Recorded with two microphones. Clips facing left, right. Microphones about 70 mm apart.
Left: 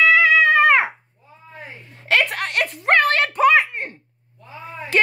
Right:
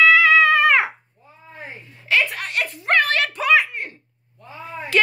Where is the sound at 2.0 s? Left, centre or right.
Left.